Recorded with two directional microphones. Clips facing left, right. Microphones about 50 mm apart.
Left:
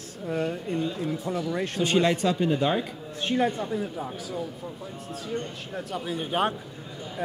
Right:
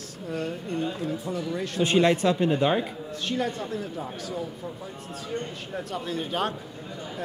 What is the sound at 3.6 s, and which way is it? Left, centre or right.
Speech, centre.